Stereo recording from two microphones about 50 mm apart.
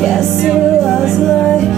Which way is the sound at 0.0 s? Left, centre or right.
Centre.